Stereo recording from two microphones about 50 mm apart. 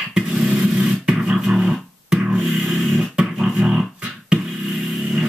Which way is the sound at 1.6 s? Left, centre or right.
Centre.